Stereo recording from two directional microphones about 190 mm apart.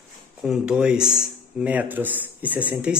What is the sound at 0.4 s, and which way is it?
Speech, 5° right (ahead or behind).